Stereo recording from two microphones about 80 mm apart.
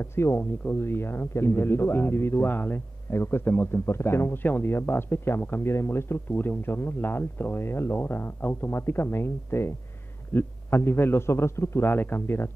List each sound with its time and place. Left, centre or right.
0.0 s speech: left